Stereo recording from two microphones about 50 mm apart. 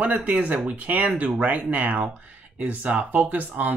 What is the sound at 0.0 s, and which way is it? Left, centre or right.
Speech, right.